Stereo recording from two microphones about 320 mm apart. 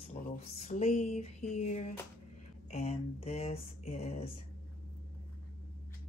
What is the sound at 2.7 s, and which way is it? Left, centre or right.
Speech, left.